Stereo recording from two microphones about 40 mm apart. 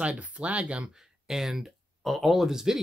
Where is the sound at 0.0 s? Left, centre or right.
Right.